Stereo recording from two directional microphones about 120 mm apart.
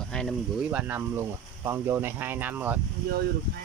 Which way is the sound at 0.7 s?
15° right (ahead or behind).